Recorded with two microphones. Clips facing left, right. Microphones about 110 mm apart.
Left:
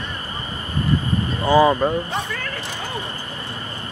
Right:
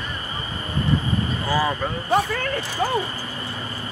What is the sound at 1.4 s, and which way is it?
Speech, 25° left (ahead or behind).